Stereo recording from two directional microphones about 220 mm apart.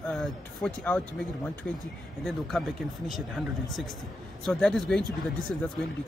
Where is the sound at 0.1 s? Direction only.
Centre (ahead or behind).